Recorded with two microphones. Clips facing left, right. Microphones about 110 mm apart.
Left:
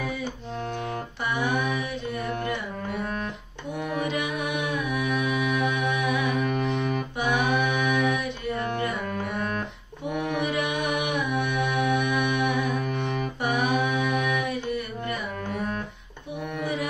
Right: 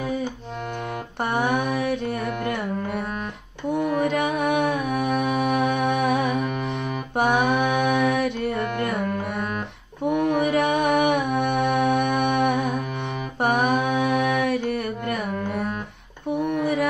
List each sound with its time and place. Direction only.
1.2 s music: 60° right (ahead or behind)
4.1 s music: 60° right (ahead or behind)
6.3 s music: centre (ahead or behind)
7.2 s music: 55° right (ahead or behind)
10.4 s music: 50° right (ahead or behind)
13.4 s mantra: 55° right (ahead or behind)
14.3 s music: 60° right (ahead or behind)
16.6 s music: 60° right (ahead or behind)